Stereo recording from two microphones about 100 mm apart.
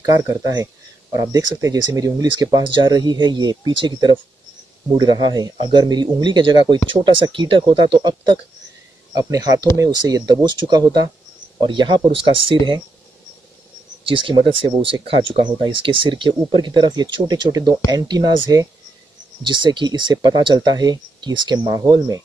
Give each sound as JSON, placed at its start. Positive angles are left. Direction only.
{"t": 0.0, "sound": "speech", "side_deg": -35}
{"t": 6.9, "sound": "speech", "side_deg": -60}
{"t": 14.0, "sound": "speech", "side_deg": -60}
{"t": 19.4, "sound": "speech", "side_deg": -50}